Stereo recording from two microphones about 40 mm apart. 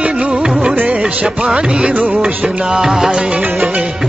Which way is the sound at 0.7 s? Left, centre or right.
Right.